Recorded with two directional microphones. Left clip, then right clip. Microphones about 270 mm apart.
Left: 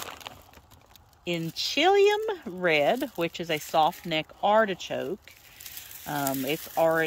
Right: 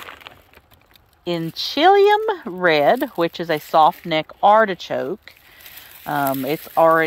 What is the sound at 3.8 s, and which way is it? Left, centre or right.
Speech, right.